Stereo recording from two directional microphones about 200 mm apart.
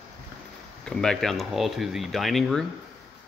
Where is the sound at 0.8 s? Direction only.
5° left (ahead or behind).